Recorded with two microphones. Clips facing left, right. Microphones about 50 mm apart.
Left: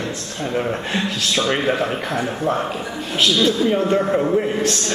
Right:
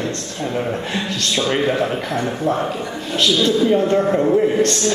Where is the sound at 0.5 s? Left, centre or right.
Centre.